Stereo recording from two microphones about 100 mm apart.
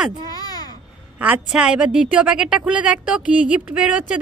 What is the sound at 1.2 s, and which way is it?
A woman's voice, 10° right (ahead or behind).